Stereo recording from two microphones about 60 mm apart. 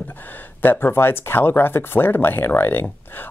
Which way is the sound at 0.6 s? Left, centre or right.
Left.